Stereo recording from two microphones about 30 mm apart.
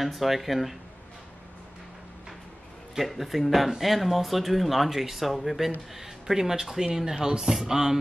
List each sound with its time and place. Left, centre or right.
0.0 s speech: centre
3.1 s speech: centre